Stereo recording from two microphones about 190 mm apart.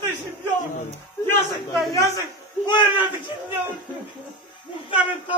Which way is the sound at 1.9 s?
20° left (ahead or behind).